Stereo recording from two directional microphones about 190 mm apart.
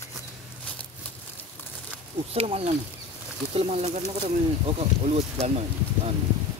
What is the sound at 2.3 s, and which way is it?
Speech, 30° right (ahead or behind).